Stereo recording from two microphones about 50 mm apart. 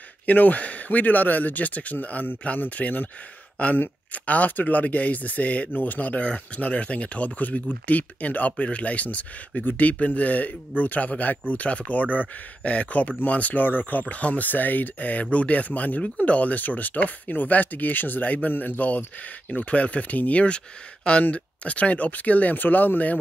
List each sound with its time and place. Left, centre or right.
0.3 s speech: left